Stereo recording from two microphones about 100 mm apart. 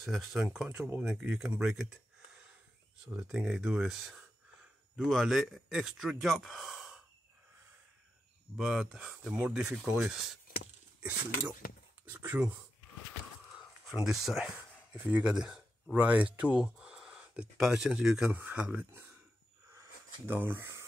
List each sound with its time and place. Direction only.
0.0 s speech: centre (ahead or behind)
3.3 s speech: 5° right (ahead or behind)
8.5 s speech: 5° right (ahead or behind)
13.6 s a sound: 5° right (ahead or behind)
15.0 s speech: 15° right (ahead or behind)
20.2 s speech: 20° right (ahead or behind)